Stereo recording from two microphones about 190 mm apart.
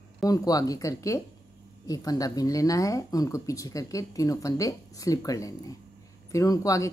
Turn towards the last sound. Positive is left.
turn(degrees=15)  # may be behind; listen again after turning